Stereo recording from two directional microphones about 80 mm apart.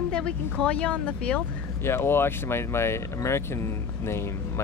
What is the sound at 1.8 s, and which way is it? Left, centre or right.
Speech, left.